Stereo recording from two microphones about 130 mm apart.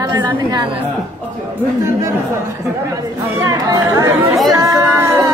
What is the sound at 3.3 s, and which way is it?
Speech, 25° right (ahead or behind).